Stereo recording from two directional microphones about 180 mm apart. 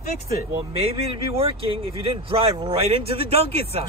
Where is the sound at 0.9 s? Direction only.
30° right (ahead or behind).